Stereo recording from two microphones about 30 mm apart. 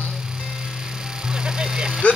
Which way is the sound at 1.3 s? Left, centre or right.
Right.